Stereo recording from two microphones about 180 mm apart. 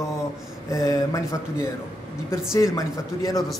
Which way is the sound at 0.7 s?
20° left (ahead or behind).